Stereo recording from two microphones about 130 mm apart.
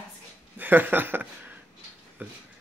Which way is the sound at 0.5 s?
15° right (ahead or behind).